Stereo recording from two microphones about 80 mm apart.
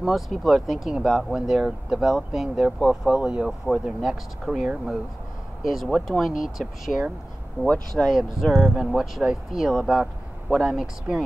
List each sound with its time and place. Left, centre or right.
0.0 s speech: centre
3.2 s speech: centre
3.4 s speech: centre
7.6 s speech: right
7.9 s speech: centre